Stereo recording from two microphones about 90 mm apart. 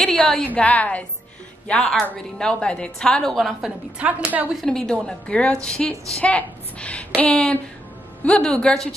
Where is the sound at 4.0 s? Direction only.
15° right (ahead or behind).